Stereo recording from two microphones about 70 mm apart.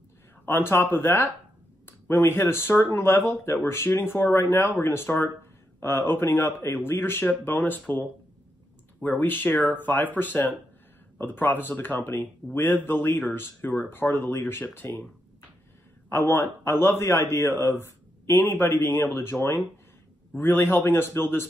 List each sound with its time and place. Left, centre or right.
0.5 s a man's voice: left
16.1 s a man's voice: left
20.3 s a man's voice: left